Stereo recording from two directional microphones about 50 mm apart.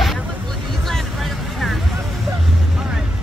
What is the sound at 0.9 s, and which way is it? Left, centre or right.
Vehicle, centre.